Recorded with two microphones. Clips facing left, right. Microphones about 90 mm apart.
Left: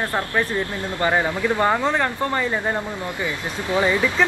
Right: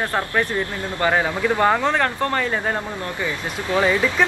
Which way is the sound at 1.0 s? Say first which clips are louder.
Right 1 dB; centre (ahead or behind).